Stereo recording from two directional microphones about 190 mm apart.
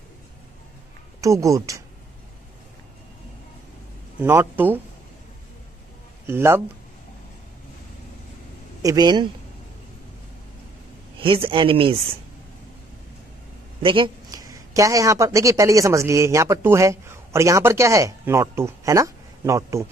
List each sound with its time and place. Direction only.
1.2 s speech: 15° right (ahead or behind)
4.2 s speech: 10° right (ahead or behind)
6.2 s speech: 15° right (ahead or behind)
8.8 s speech: 20° right (ahead or behind)
11.1 s speech: 25° right (ahead or behind)
13.8 s a woman's voice: 25° right (ahead or behind)